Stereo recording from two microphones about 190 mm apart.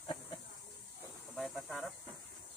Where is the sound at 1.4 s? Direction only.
Centre (ahead or behind).